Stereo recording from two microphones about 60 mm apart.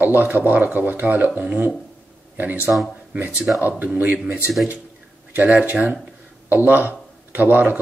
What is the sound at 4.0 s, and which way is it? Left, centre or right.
Speech, right.